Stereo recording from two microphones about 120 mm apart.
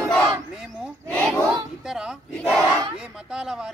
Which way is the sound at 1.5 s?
5° right (ahead or behind).